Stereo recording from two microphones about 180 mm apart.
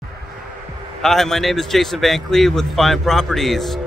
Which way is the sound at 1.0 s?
Centre (ahead or behind).